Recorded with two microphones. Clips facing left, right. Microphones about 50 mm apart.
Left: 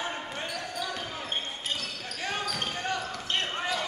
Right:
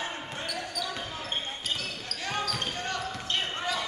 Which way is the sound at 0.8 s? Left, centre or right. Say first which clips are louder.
Left 1 dB; centre.